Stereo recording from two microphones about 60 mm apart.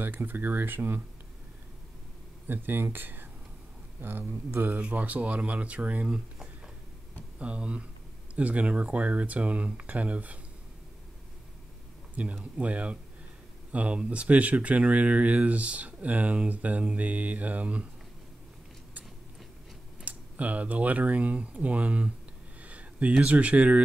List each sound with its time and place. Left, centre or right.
0.0 s speech: right
2.4 s speech: right
4.7 s speech: right
12.2 s speech: right
20.1 s speech: right